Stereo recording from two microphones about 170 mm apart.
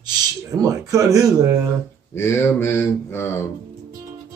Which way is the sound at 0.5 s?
20° right (ahead or behind).